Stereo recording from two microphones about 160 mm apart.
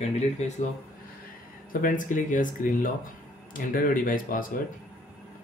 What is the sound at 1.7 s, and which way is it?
Speech, 55° left (ahead or behind).